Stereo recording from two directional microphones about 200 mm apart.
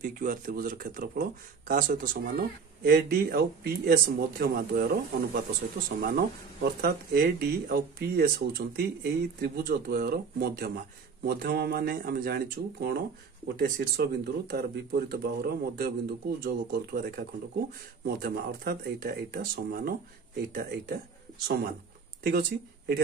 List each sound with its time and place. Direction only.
0.0 s speech: 45° right (ahead or behind)
22.2 s speech: 50° right (ahead or behind)